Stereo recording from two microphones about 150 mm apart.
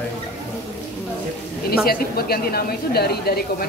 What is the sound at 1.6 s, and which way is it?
A woman's voice, 90° left.